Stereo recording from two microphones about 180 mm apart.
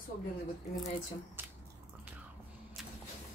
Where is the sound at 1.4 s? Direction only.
10° right (ahead or behind).